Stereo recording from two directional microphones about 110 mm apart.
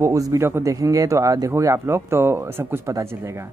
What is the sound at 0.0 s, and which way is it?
Speech, 30° right (ahead or behind).